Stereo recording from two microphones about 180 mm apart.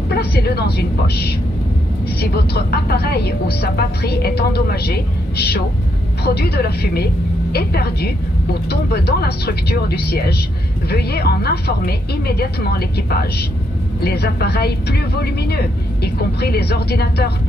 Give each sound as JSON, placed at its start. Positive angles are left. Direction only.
{"t": 0.1, "sound": "a woman's voice", "side_deg": 65}